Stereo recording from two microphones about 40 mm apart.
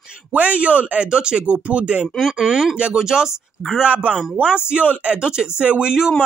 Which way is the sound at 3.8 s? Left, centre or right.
Right.